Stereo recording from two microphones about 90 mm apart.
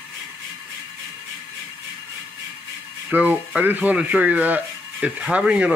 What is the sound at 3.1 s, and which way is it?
Speech, 15° right (ahead or behind).